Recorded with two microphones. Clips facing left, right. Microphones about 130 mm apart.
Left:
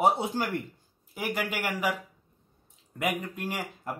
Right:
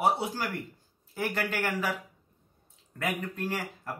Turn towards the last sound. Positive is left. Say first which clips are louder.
# even
turn(degrees=15)  # may be behind; listen again after turning